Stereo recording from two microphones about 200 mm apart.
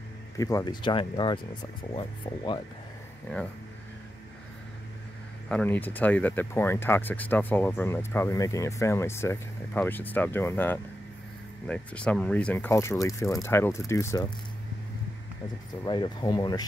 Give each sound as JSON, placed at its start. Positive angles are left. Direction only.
{"t": 0.4, "sound": "speech", "side_deg": 15}
{"t": 5.5, "sound": "speech", "side_deg": 5}
{"t": 15.8, "sound": "speech", "side_deg": 20}